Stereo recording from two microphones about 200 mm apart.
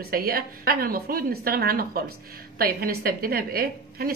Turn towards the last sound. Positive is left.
turn(degrees=-50)  # may be behind; listen again after turning